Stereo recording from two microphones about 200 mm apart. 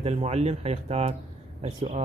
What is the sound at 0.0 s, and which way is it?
Speech, 30° right (ahead or behind).